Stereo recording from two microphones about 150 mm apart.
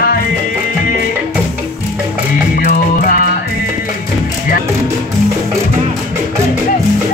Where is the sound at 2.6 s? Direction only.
80° left.